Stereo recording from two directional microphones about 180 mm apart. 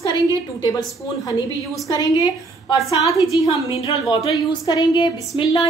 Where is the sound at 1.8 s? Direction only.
20° left (ahead or behind).